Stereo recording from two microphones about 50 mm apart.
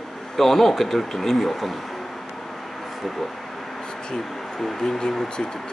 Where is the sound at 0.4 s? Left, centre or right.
Centre.